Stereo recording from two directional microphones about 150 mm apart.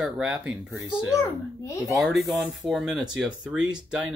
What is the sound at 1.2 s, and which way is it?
Speech, 20° left (ahead or behind).